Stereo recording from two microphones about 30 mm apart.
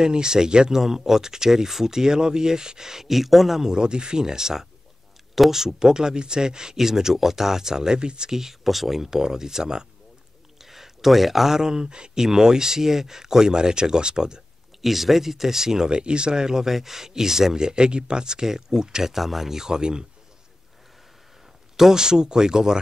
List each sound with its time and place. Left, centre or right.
0.0 s speech: right
0.7 s speech: centre
3.6 s speech: right
5.3 s speech: centre; by 8.3 s right
8.3 s speech: centre
9.1 s speech: centre
10.6 s a sound: centre
11.7 s speech: right
12.2 s speech: centre
14.8 s speech: centre
15.9 s speech: right
19.1 s speech: centre; by 20.1 s right
21.9 s speech: right